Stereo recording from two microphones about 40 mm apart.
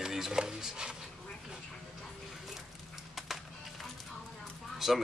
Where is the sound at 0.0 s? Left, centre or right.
Centre.